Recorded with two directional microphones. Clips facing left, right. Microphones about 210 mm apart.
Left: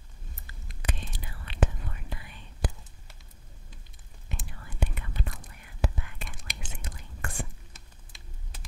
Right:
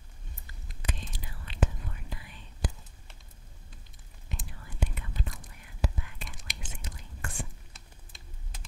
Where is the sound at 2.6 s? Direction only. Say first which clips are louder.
Left 2 dB; 60° left (ahead or behind).